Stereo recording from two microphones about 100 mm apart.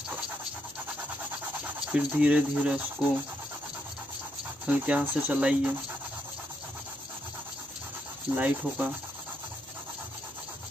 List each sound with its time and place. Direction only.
1.9 s speech: 10° right (ahead or behind)
4.6 s speech: 15° right (ahead or behind)
8.4 s speech: 15° right (ahead or behind)